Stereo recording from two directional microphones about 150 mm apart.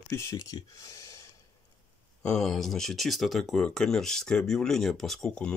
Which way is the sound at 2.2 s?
5° left (ahead or behind).